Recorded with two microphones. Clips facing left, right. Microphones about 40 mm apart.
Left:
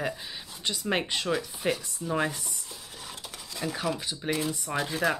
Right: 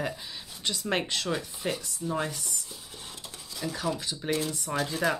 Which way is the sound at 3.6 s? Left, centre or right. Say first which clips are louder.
Left 1 dB; left.